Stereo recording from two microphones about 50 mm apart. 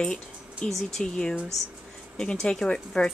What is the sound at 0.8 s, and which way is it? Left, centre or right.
Speech, centre.